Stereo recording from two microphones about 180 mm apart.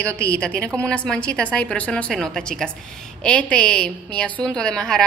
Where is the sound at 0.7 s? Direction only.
5° left (ahead or behind).